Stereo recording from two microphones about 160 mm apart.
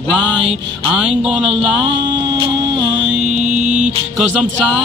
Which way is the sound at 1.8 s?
30° right (ahead or behind).